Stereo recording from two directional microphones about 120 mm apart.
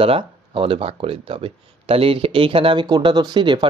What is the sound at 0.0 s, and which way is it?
Speech, 50° right (ahead or behind).